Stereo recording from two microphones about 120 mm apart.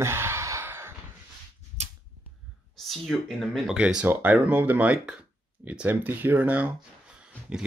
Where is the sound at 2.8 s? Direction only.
Centre (ahead or behind).